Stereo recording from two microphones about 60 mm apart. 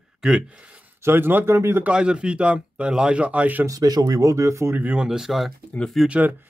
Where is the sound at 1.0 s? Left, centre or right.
Right.